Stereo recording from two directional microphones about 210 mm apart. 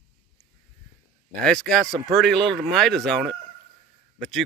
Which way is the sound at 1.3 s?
5° left (ahead or behind).